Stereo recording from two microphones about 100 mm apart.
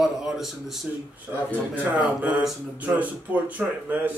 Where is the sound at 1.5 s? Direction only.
15° right (ahead or behind).